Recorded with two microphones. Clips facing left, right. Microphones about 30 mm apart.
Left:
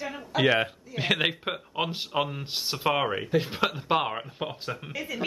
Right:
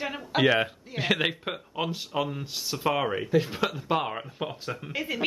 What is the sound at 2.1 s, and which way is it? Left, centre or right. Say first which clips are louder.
Speech: left 1 dB; centre.